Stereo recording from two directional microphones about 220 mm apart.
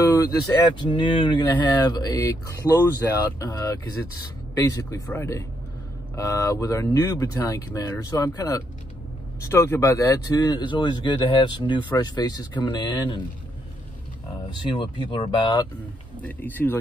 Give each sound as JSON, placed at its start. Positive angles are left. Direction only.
{"t": 0.0, "sound": "speech", "side_deg": 15}
{"t": 14.5, "sound": "speech", "side_deg": 20}
{"t": 16.2, "sound": "speech", "side_deg": 10}